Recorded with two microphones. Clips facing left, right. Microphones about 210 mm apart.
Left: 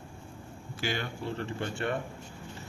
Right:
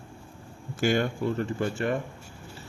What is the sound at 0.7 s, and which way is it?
Speech, 45° right (ahead or behind).